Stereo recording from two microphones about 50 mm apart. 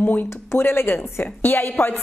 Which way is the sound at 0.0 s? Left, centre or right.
Left.